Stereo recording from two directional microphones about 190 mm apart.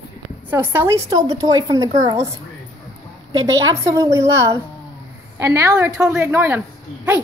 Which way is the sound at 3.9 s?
15° right (ahead or behind).